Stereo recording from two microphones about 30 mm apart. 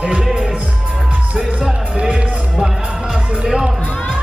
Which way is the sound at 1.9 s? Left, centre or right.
Right.